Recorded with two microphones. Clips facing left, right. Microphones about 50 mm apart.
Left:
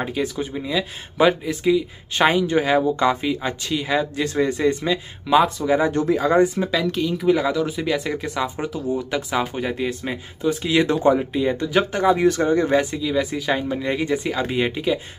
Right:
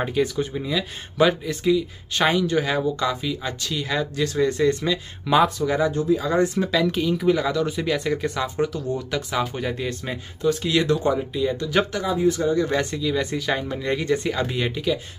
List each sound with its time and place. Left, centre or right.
0.0 s speech: centre
3.0 s speech: left; by 5.8 s centre
5.9 s speech: left
6.4 s speech: centre
6.9 s speech: centre; by 11.7 s left
11.9 s speech: left
12.2 s speech: left
12.7 s speech: centre